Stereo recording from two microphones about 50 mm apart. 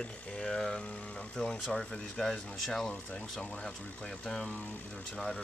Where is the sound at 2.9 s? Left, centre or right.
Left.